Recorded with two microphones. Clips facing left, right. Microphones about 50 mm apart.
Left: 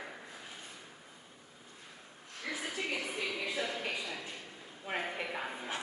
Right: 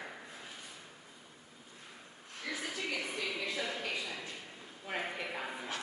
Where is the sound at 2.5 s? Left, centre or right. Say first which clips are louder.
Left 1 dB; centre.